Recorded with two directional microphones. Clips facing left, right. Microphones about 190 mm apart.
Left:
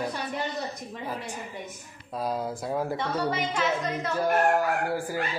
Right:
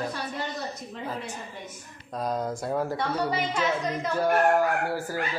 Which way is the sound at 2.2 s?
5° left (ahead or behind).